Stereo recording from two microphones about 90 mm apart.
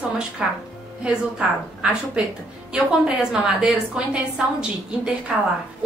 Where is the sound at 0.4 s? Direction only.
5° right (ahead or behind).